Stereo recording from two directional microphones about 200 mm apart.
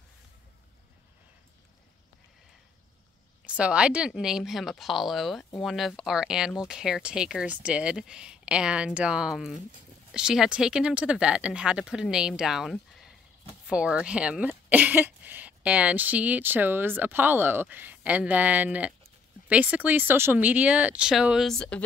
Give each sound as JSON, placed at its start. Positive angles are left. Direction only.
{"t": 3.4, "sound": "speech", "side_deg": -5}